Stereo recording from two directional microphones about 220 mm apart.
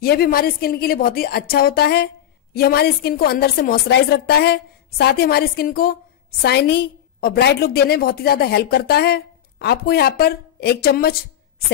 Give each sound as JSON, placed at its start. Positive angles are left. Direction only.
{"t": 0.0, "sound": "a woman's voice", "side_deg": 45}